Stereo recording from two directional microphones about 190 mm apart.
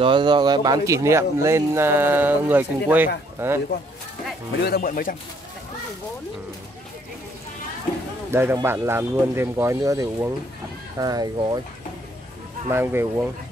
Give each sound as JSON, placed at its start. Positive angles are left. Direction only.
{"t": 0.0, "sound": "speech", "side_deg": -25}
{"t": 4.6, "sound": "speech", "side_deg": 55}
{"t": 8.3, "sound": "speech", "side_deg": -15}
{"t": 12.6, "sound": "speech", "side_deg": -10}